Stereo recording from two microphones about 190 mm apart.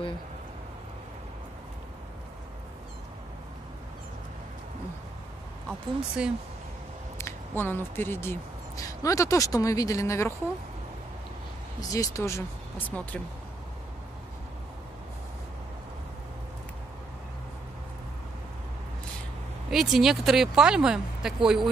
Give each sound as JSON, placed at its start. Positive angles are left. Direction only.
{"t": 5.7, "sound": "speech", "side_deg": -5}
{"t": 7.2, "sound": "speech", "side_deg": 15}
{"t": 11.9, "sound": "speech", "side_deg": 15}
{"t": 19.7, "sound": "speech", "side_deg": 0}